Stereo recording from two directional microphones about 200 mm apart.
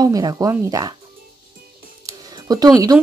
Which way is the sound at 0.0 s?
20° right (ahead or behind).